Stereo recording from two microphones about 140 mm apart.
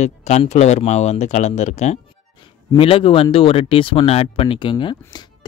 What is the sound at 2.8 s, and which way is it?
Speech, 40° left (ahead or behind).